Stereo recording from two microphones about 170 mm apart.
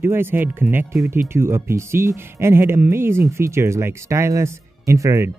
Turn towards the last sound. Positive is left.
turn(degrees=-15)  # may be behind; listen again after turning